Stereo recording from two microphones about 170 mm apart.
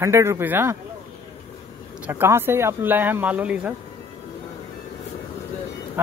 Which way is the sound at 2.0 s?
15° right (ahead or behind).